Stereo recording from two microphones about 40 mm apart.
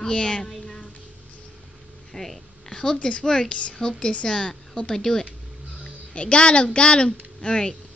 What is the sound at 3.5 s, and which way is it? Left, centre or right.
A child's voice, left.